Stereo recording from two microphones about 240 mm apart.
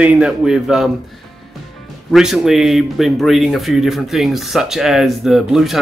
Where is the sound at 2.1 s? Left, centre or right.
Centre.